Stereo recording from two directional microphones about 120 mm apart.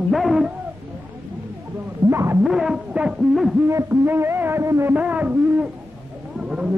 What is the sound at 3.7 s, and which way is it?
Music, 20° right (ahead or behind).